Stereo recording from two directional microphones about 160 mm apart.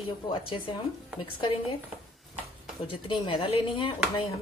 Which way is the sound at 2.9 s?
30° left (ahead or behind).